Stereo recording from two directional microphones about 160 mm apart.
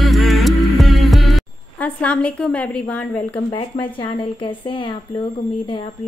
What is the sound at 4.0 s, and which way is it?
Speech, 30° left (ahead or behind).